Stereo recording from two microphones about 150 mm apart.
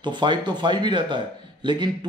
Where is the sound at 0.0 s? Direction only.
30° right (ahead or behind).